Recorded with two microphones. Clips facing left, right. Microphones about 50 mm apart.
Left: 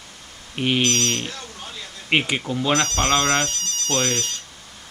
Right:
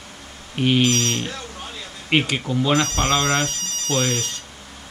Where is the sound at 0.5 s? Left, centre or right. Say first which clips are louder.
Right 3 dB; centre.